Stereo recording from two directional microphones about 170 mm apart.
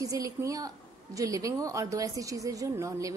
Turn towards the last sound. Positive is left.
turn(degrees=-20)  # may be behind; listen again after turning